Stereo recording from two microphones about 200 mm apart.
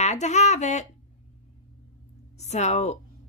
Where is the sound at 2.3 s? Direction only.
35° left (ahead or behind).